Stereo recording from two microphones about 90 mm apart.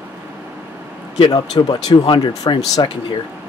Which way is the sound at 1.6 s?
55° left (ahead or behind).